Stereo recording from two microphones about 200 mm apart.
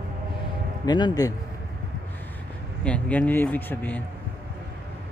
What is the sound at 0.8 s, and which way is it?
Speech, 20° left (ahead or behind).